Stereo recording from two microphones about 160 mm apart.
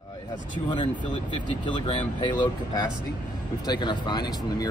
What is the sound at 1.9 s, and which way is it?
Speech, 30° left (ahead or behind).